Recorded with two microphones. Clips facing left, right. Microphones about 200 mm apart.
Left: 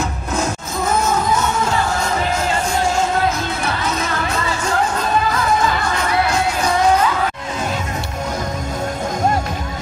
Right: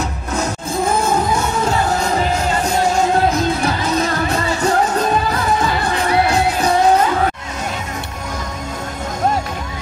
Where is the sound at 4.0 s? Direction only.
35° right (ahead or behind).